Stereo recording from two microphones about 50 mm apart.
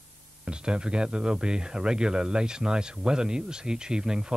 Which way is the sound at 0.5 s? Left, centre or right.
Centre.